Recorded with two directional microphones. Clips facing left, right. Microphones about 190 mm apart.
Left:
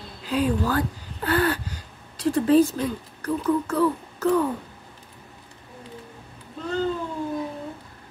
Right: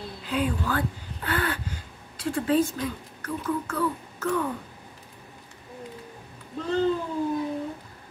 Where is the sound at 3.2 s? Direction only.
35° left (ahead or behind).